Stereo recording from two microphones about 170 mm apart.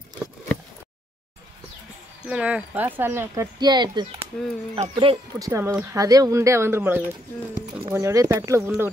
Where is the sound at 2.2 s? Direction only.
5° right (ahead or behind).